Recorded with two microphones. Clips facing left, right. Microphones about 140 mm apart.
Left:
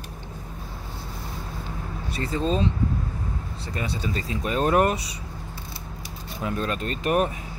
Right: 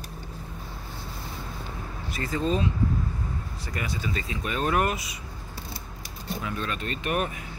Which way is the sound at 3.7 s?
30° left (ahead or behind).